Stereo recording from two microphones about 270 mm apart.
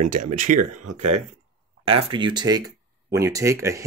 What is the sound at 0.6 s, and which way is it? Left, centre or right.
Speech, right.